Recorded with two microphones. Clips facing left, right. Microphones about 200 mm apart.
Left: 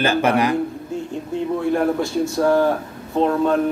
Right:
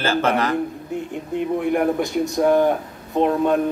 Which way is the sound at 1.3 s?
20° right (ahead or behind).